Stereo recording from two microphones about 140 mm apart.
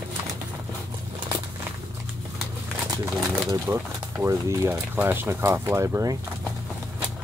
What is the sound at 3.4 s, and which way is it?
Speech, 20° right (ahead or behind).